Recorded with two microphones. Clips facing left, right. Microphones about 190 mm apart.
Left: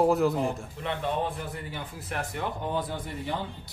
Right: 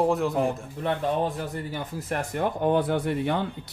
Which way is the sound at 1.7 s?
45° right (ahead or behind).